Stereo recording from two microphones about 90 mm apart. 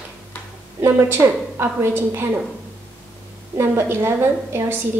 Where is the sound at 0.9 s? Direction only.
25° right (ahead or behind).